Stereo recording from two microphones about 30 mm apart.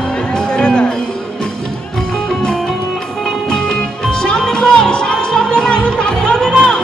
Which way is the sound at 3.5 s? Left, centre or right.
Left.